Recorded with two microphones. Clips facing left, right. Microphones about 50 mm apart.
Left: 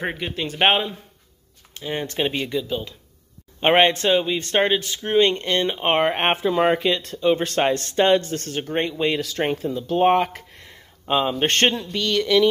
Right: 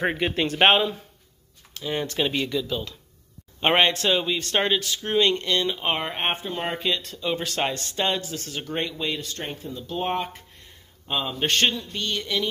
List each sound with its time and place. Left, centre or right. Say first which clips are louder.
0.0 s speech: right 3 dB; centre
0.6 s speech: even; centre
1.7 s speech: left 1 dB; left
6.3 s speech: left 10 dB; left
6.7 s speech: left 6 dB; left
8.5 s speech: left 5 dB; left
9.2 s speech: left 10 dB; left
11.8 s speech: left 7 dB; left